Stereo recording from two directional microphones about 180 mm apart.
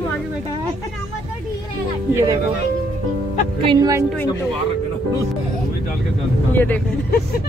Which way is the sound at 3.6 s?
25° right (ahead or behind).